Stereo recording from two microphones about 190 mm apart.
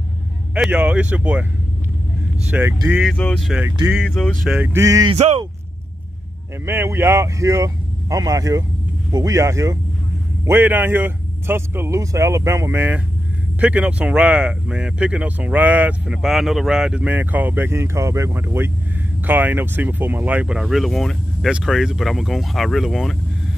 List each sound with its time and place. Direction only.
0.6 s speech: 5° right (ahead or behind)
2.4 s speech: 10° right (ahead or behind)
3.1 s speech: 5° left (ahead or behind); by 5.1 s 15° right (ahead or behind)
5.1 s speech: 30° right (ahead or behind)
6.6 s speech: 15° right (ahead or behind)